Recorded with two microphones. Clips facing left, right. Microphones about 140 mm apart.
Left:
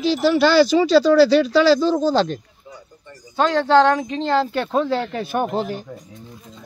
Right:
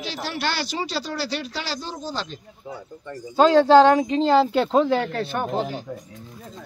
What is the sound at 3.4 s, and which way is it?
Speech, 15° right (ahead or behind).